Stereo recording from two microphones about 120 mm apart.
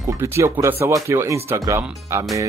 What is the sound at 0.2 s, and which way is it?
Speech, 20° right (ahead or behind).